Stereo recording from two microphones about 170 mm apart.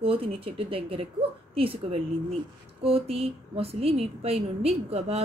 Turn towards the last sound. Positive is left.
turn(degrees=-40)  # may be behind; listen again after turning